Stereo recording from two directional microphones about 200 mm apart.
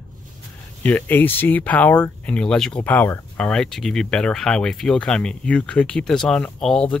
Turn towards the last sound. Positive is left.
turn(degrees=5)  # may be behind; listen again after turning